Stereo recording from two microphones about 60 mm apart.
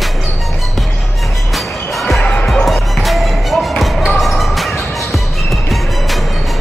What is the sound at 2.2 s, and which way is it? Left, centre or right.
Music, left.